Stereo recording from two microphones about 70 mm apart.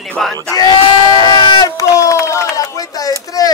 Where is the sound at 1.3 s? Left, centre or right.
Left.